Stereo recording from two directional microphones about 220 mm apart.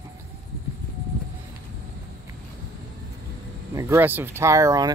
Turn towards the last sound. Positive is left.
turn(degrees=-15)  # may be behind; listen again after turning